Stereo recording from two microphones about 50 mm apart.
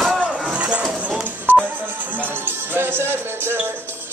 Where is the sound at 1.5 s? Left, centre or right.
Right.